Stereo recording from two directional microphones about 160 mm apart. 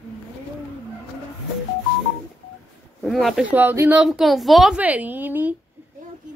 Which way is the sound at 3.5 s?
15° right (ahead or behind).